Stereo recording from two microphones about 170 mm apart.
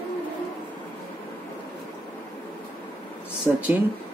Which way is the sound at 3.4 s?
10° right (ahead or behind).